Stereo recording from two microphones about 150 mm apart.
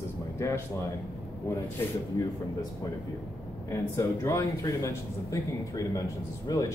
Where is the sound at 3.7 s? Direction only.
20° left (ahead or behind).